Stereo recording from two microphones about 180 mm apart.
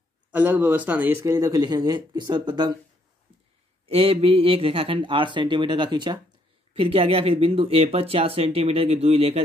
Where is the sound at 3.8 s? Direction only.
35° right (ahead or behind).